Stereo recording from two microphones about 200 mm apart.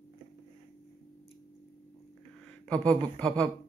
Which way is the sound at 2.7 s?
5° left (ahead or behind).